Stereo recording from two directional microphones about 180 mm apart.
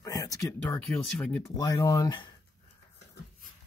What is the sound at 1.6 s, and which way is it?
Speech, 20° left (ahead or behind).